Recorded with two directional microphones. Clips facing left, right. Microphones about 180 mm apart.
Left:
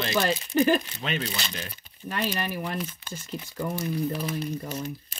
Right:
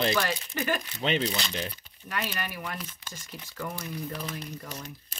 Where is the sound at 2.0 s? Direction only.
30° left (ahead or behind).